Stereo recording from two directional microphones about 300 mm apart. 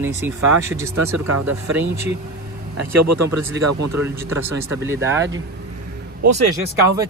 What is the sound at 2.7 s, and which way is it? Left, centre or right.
Speech, right.